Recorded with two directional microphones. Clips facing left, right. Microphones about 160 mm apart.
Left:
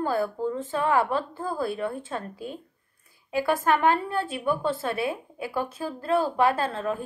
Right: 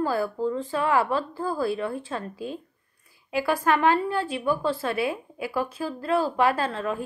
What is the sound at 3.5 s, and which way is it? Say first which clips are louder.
A woman's voice: right 1 dB; 25° left (ahead or behind).